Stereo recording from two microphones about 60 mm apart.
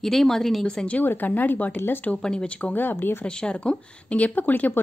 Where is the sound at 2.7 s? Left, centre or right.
Left.